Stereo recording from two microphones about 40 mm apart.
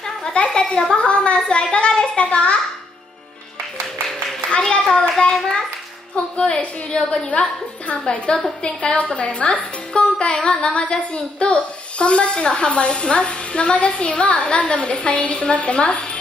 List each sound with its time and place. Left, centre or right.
0.3 s speech: left
0.7 s a woman's voice: centre
0.9 s a woman's voice: left
4.6 s a sound: centre
6.1 s a woman's voice: left